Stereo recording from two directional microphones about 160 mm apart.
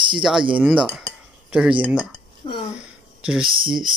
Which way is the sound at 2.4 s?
35° left (ahead or behind).